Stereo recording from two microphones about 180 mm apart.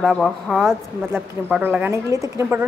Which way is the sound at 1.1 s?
10° right (ahead or behind).